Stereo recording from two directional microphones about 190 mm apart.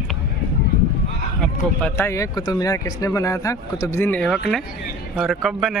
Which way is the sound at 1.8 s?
10° left (ahead or behind).